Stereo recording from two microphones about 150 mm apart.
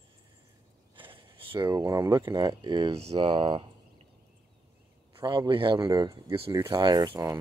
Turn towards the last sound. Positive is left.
turn(degrees=-25)  # may be behind; listen again after turning